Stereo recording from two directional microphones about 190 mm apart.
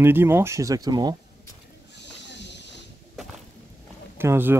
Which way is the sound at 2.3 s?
65° left (ahead or behind).